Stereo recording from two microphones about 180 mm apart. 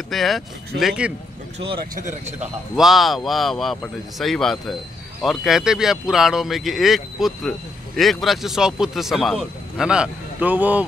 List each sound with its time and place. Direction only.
0.1 s speech: centre (ahead or behind)
2.0 s a man's voice: 45° right (ahead or behind)
2.7 s speech: centre (ahead or behind)